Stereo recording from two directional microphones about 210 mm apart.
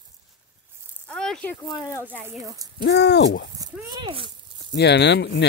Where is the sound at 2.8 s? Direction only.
55° left (ahead or behind).